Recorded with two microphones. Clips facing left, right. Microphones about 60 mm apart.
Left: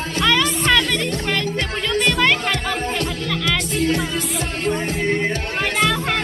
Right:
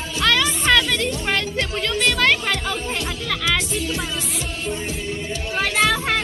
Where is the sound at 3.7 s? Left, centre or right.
Left.